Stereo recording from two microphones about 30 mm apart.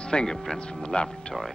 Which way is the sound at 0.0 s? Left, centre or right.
Left.